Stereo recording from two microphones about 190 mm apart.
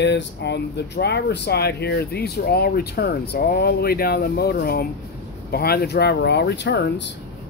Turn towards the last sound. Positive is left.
turn(degrees=65)  # may be behind; listen again after turning